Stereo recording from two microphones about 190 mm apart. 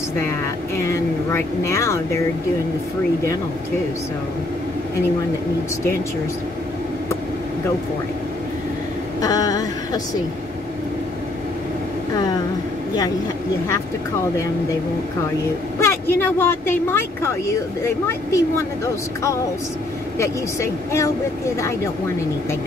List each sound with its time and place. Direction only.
0.7 s speech: 15° left (ahead or behind)
9.2 s a sound: 20° left (ahead or behind)
15.8 s speech: 15° left (ahead or behind)
20.2 s speech: 15° left (ahead or behind)